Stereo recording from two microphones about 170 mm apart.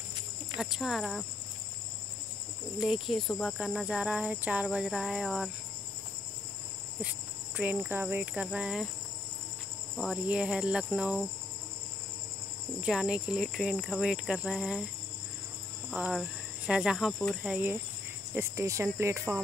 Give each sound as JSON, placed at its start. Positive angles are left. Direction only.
{"t": 0.6, "sound": "cricket", "side_deg": 0}
{"t": 2.8, "sound": "cricket", "side_deg": 0}
{"t": 7.5, "sound": "cricket", "side_deg": -10}
{"t": 9.9, "sound": "cricket", "side_deg": -5}
{"t": 12.8, "sound": "cricket", "side_deg": -5}
{"t": 15.9, "sound": "cricket", "side_deg": -5}
{"t": 17.4, "sound": "cricket", "side_deg": -10}